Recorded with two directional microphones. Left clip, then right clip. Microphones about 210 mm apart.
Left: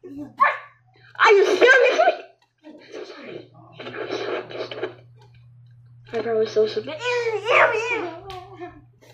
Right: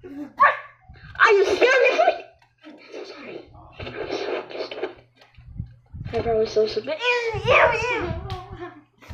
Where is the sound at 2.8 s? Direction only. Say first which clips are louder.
Even; centre (ahead or behind).